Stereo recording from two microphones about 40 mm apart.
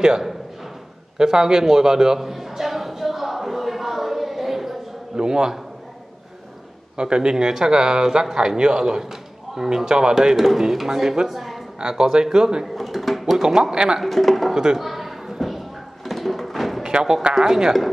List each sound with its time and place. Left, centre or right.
1.1 s a sound: centre
5.1 s a sound: centre
7.0 s a man's voice: right
10.3 s a man's voice: centre
11.3 s a sound: centre
11.8 s speech: centre
12.7 s speech: centre
13.4 s a man's voice: centre
14.0 s speech: centre
14.5 s speech: centre
14.8 s a sound: centre
16.8 s a man's voice: centre